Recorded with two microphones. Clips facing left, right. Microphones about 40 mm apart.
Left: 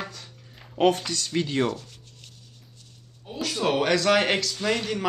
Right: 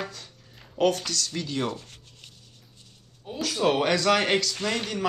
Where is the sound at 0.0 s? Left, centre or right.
Centre.